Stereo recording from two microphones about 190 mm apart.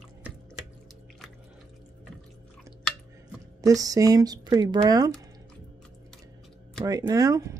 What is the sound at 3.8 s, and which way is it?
Speech, 20° right (ahead or behind).